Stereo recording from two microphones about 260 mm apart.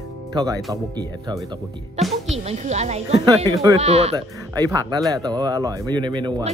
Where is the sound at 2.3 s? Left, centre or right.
Right.